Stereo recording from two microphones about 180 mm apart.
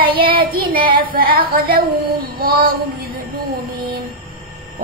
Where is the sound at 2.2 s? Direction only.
55° right (ahead or behind).